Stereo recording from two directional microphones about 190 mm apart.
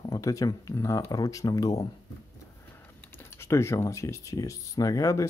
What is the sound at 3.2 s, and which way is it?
Speech, 15° left (ahead or behind).